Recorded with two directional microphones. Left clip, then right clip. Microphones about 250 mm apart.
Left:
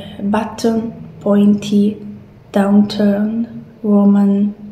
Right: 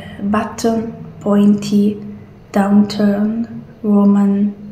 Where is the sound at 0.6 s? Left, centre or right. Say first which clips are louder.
Even; centre.